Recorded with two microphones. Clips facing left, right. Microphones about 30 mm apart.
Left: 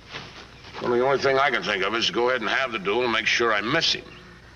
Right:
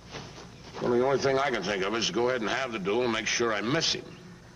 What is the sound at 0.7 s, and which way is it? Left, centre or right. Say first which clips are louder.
A man's voice: left 3 dB; left.